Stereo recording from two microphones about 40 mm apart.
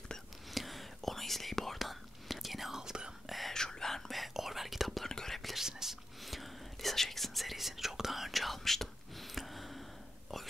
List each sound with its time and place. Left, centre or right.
0.5 s whispering: centre
2.8 s whispering: centre
3.3 s whispering: centre
3.5 s whispering: centre
5.6 s whispering: centre
6.2 s whispering: centre